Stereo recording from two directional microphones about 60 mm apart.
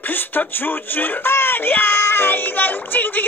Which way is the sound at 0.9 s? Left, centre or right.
Left.